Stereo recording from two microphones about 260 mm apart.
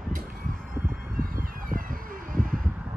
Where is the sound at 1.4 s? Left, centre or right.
Right.